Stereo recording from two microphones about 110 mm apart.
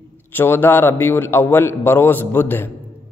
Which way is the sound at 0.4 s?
20° left (ahead or behind).